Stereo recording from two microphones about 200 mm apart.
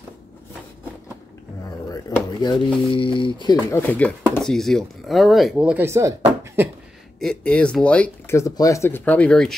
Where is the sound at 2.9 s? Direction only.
25° left (ahead or behind).